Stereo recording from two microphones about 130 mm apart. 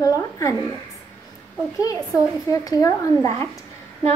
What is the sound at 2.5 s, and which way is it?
A woman's voice, 25° left (ahead or behind).